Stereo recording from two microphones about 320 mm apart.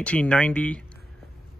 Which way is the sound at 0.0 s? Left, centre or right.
Centre.